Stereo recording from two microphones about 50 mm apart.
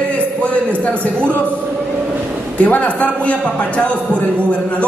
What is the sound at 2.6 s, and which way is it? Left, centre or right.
Speech, left.